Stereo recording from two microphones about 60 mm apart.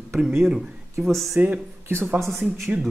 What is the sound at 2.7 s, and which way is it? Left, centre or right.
Speech, right.